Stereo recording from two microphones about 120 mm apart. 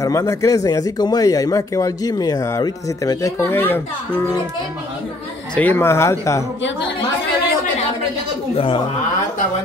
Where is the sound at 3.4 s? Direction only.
20° left (ahead or behind).